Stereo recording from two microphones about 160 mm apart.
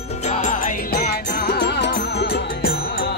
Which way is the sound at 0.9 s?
90° left.